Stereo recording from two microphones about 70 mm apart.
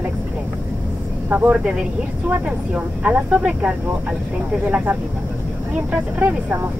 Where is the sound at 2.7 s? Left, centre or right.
Centre.